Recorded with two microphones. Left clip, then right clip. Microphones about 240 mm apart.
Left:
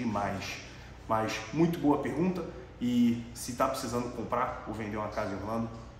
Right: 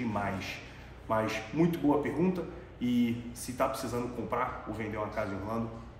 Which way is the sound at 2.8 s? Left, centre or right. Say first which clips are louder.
Left 1 dB; centre.